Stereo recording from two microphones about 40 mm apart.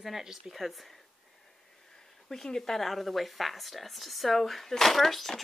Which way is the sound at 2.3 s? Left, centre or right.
Centre.